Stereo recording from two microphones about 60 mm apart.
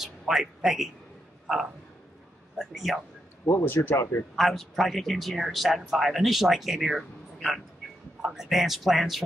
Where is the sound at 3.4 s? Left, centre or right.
Left.